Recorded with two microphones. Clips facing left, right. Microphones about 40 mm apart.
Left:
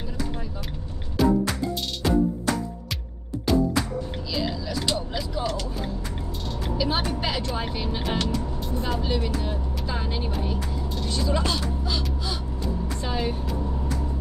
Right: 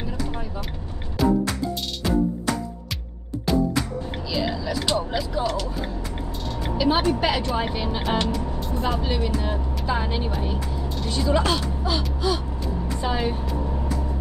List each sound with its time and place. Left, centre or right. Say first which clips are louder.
2.0 s music: left 1 dB; centre
3.5 s music: even; centre
4.3 s speech: right 4 dB; centre
8.3 s speech: right 2 dB; centre
9.0 s speech: right 2 dB; centre
12.0 s gasp: right 6 dB; centre
13.0 s vehicle: right 4 dB; centre